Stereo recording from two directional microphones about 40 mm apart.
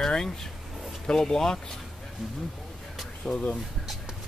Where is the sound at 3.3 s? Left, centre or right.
Left.